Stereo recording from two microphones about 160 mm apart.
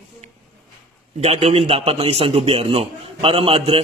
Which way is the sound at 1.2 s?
40° right (ahead or behind).